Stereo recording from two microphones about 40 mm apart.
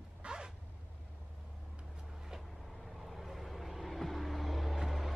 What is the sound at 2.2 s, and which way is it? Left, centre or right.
Vehicle, centre.